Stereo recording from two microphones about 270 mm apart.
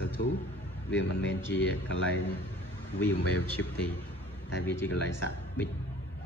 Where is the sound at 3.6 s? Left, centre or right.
Left.